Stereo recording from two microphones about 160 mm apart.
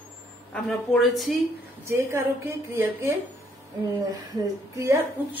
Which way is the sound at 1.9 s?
15° right (ahead or behind).